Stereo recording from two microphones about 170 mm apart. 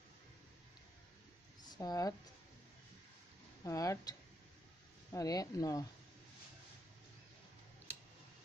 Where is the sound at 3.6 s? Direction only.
20° left (ahead or behind).